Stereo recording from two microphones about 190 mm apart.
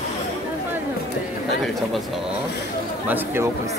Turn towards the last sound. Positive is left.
turn(degrees=-10)  # may be behind; listen again after turning